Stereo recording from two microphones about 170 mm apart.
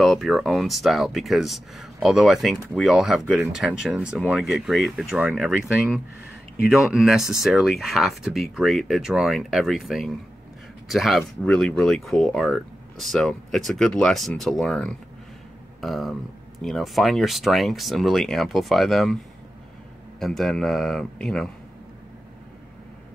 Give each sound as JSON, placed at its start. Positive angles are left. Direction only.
{"t": 0.0, "sound": "speech", "side_deg": 0}
{"t": 20.2, "sound": "speech", "side_deg": 0}